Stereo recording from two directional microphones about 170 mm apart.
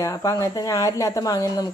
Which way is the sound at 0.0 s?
20° left (ahead or behind).